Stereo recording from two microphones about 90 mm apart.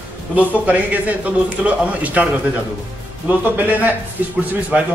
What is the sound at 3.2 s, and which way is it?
Speech, 20° right (ahead or behind).